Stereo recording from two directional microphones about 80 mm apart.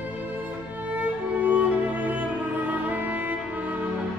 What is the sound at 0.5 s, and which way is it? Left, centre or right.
Music, right.